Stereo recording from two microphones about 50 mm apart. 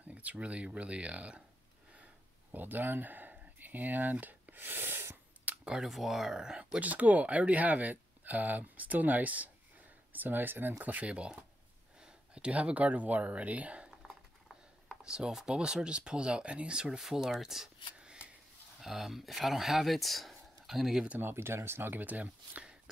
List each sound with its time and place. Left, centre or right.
0.1 s speech: right
2.5 s speech: right
5.5 s camera: right
5.9 s speech: centre
6.8 s speech: right
15.0 s speech: centre
17.0 s speech: centre
17.9 s shuffling cards: centre
18.8 s speech: centre
21.2 s speech: right